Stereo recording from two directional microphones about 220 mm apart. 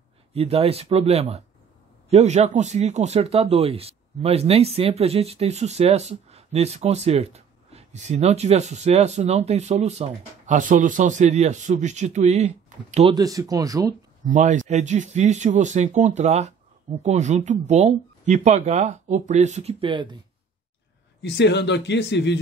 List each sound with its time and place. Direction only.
0.3 s speech: 25° right (ahead or behind)
13.1 s speech: 15° right (ahead or behind)
14.2 s speech: 35° right (ahead or behind)
21.2 s speech: 50° left (ahead or behind)